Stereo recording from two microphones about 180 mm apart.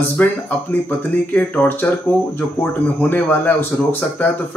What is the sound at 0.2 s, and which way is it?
Speech, 5° left (ahead or behind).